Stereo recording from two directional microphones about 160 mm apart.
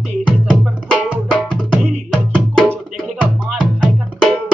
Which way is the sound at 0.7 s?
10° right (ahead or behind).